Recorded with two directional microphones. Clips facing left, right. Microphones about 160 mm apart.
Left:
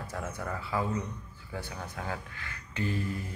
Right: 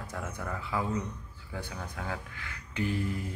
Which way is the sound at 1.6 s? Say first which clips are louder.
Even; 10° left (ahead or behind).